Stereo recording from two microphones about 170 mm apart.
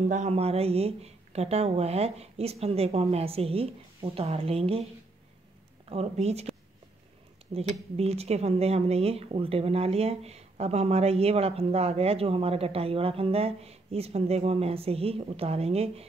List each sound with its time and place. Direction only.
0.1 s speech: 40° right (ahead or behind)
5.9 s speech: 40° right (ahead or behind)
7.5 s speech: 35° right (ahead or behind)